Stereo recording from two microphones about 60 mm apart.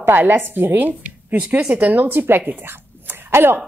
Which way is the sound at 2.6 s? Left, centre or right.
Right.